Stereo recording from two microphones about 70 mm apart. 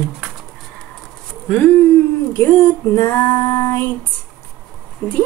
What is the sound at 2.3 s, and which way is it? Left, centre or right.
Speech, left.